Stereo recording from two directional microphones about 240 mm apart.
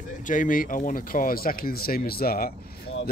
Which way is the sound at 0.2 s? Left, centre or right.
Left.